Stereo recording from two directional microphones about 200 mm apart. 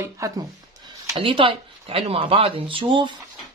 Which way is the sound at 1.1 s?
25° right (ahead or behind).